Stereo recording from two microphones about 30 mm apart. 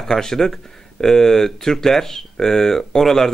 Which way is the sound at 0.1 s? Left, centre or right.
Centre.